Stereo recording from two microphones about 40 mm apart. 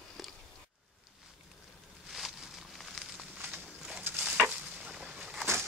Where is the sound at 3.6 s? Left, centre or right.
Right.